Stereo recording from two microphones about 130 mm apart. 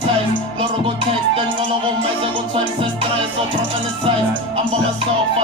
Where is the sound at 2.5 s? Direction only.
45° right (ahead or behind).